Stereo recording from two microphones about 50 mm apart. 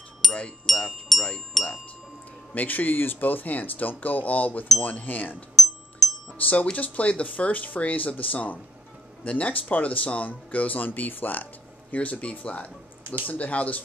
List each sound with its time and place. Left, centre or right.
0.2 s a sound: centre
0.7 s speech: centre
2.5 s speech: left
6.0 s chime: centre
6.3 s speech: left